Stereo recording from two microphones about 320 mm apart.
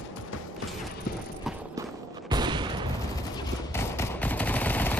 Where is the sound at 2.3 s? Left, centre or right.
Centre.